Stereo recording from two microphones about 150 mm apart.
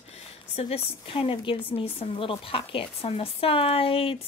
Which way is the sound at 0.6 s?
40° left (ahead or behind).